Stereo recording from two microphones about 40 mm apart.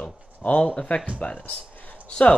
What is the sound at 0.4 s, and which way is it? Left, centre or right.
Speech, left.